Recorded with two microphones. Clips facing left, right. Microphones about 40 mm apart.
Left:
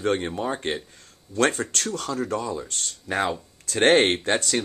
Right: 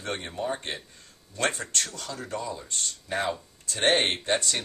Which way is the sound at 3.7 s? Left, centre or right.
Left.